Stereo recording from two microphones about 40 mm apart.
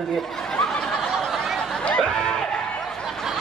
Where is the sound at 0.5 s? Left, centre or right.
Centre.